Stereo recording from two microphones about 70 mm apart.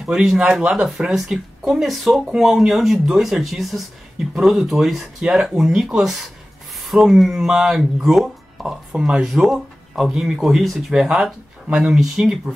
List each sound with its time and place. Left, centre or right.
0.0 s speech: centre